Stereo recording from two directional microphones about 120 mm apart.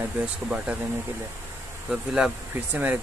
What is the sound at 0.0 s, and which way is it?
Speech, 10° right (ahead or behind).